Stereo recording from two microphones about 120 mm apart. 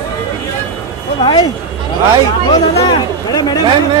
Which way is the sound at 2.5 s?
35° left (ahead or behind).